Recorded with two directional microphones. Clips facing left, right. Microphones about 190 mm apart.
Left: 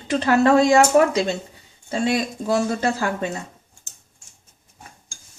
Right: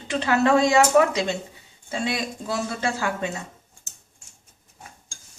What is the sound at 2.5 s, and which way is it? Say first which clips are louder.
Speech: left 6 dB; 45° left (ahead or behind).